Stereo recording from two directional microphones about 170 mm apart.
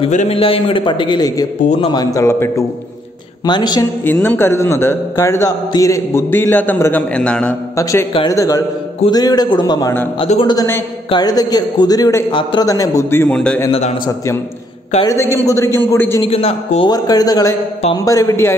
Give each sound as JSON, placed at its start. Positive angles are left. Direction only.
{"t": 0.1, "sound": "a man's voice", "side_deg": 40}
{"t": 4.0, "sound": "a man's voice", "side_deg": 10}
{"t": 7.7, "sound": "a man's voice", "side_deg": 20}
{"t": 10.1, "sound": "a man's voice", "side_deg": 40}
{"t": 10.4, "sound": "a man's voice", "side_deg": 20}
{"t": 13.7, "sound": "a man's voice", "side_deg": 35}
{"t": 14.0, "sound": "a man's voice", "side_deg": 20}
{"t": 16.2, "sound": "a man's voice", "side_deg": 35}
{"t": 16.9, "sound": "a man's voice", "side_deg": 20}